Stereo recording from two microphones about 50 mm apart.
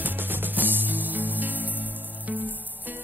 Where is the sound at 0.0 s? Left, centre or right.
Right.